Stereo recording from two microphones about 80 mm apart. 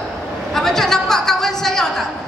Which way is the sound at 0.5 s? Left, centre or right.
Centre.